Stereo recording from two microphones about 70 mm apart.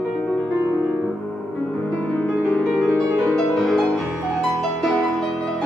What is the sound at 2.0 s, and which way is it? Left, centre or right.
Music, centre.